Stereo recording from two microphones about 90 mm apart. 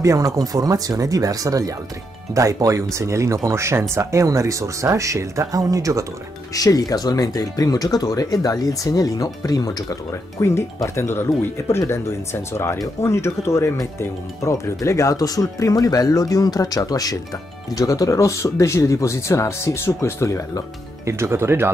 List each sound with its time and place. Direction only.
0.0 s speech: 40° right (ahead or behind)
6.5 s speech: 45° left (ahead or behind)
10.4 s speech: 30° left (ahead or behind)
21.0 s speech: 30° right (ahead or behind)